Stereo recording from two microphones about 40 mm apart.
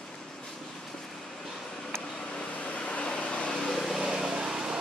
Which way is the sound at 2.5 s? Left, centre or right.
Left.